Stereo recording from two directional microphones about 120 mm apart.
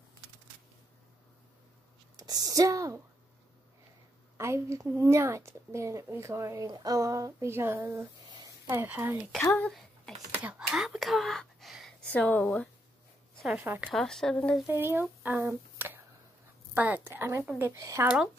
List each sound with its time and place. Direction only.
2.1 s a woman's voice: 30° right (ahead or behind)
4.4 s a woman's voice: 20° right (ahead or behind)
9.3 s speech: 10° left (ahead or behind)
9.8 s a sound: centre (ahead or behind)
12.1 s speech: 15° left (ahead or behind)
13.3 s a sound: centre (ahead or behind)
13.6 s speech: 10° right (ahead or behind)
13.9 s speech: 5° left (ahead or behind)
14.7 s a woman's voice: 20° right (ahead or behind)